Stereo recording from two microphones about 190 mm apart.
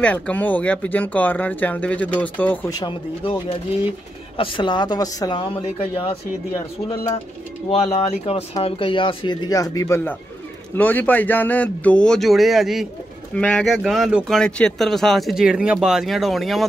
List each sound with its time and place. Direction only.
0.0 s speech: 5° left (ahead or behind)
2.7 s speech: 25° left (ahead or behind)
7.7 s speech: 35° left (ahead or behind); by 16.6 s centre (ahead or behind)